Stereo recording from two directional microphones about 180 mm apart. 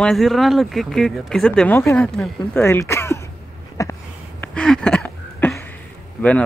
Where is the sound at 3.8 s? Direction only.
15° left (ahead or behind).